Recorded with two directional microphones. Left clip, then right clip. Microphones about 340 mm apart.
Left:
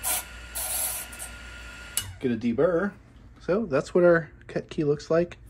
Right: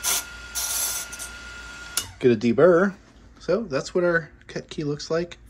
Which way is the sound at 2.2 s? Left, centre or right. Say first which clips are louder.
Right 7 dB; right.